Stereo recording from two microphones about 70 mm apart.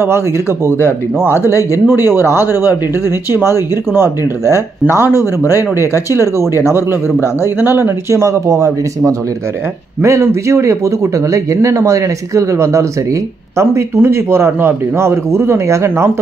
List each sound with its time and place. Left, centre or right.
1.2 s speech: left
1.9 s speech: right
3.5 s speech: right
5.1 s speech: left
5.6 s speech: right
8.1 s speech: right